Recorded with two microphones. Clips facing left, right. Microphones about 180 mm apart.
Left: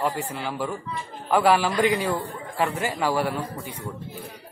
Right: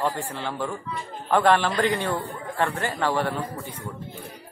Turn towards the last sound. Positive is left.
turn(degrees=10)  # may be behind; listen again after turning